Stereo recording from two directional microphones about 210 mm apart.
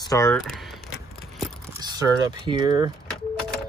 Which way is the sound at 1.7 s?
20° right (ahead or behind).